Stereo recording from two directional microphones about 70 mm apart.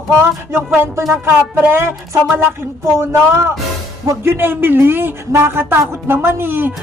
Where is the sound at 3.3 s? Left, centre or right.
Right.